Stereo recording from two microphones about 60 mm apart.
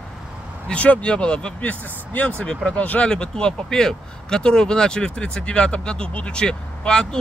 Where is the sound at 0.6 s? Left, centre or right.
Left.